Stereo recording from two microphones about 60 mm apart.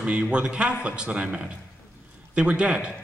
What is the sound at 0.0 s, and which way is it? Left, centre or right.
A man's voice, centre.